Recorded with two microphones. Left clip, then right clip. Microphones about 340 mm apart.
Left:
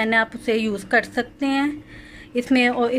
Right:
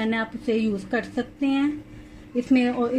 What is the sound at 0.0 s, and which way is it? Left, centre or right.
A woman's voice, centre.